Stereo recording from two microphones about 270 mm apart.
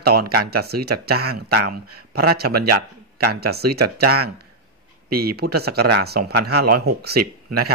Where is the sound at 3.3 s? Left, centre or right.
Right.